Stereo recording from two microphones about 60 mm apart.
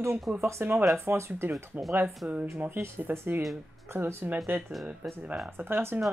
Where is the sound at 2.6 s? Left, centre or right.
Right.